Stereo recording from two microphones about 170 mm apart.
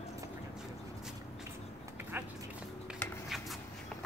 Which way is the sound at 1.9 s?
10° right (ahead or behind).